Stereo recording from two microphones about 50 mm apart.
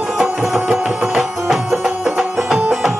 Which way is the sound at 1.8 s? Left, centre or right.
Centre.